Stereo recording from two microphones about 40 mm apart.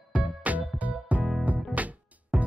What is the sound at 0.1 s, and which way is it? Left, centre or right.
Music, right.